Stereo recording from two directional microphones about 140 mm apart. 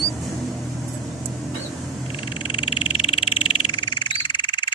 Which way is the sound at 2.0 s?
35° left (ahead or behind).